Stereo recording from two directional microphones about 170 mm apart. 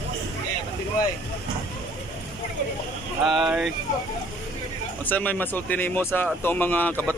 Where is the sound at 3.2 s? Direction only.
Centre (ahead or behind).